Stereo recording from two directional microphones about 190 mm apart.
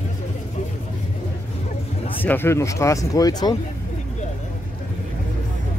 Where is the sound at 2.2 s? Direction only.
10° left (ahead or behind).